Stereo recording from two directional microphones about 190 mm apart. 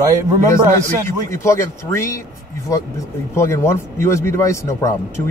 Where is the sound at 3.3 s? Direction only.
15° left (ahead or behind).